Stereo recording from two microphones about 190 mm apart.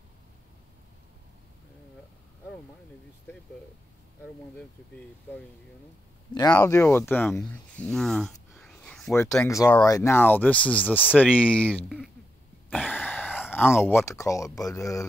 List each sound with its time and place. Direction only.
4.6 s speech: 5° left (ahead or behind)
6.5 s speech: 15° left (ahead or behind)
9.5 s speech: 15° left (ahead or behind)
12.6 s a sound: 10° left (ahead or behind)
13.5 s speech: 10° left (ahead or behind)